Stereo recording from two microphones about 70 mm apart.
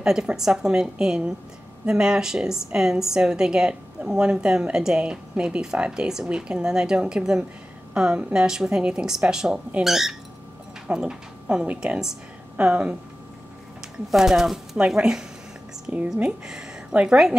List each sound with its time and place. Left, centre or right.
0.0 s a woman's voice: centre
14.1 s a woman's voice: centre